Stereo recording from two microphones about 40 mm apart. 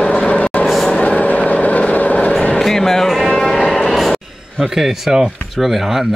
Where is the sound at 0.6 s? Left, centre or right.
Centre.